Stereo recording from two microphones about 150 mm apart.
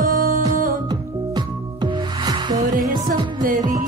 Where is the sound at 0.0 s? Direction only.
65° right (ahead or behind).